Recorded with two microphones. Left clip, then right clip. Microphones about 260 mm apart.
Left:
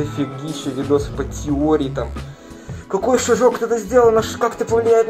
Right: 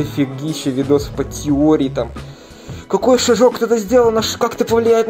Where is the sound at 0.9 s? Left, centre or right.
Right.